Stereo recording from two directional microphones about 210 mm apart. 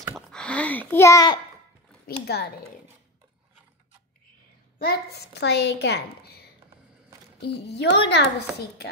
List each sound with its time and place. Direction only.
0.1 s a child's voice: 5° left (ahead or behind)
2.0 s a child's voice: 50° left (ahead or behind)
4.7 s a child's voice: 50° left (ahead or behind)